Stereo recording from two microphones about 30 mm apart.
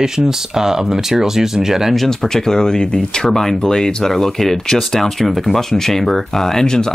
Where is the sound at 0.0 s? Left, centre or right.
Centre.